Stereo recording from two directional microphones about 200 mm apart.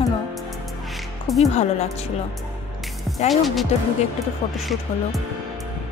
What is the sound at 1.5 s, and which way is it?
Speech, 35° left (ahead or behind).